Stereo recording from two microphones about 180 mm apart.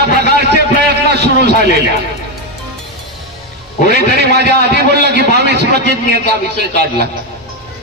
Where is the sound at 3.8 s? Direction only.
65° right (ahead or behind).